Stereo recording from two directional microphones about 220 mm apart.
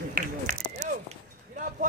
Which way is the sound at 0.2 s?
40° right (ahead or behind).